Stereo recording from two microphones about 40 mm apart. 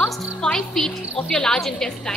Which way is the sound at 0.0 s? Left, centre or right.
Centre.